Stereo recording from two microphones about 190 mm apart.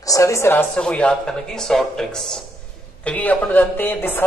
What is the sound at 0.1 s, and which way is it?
Speech, 15° left (ahead or behind).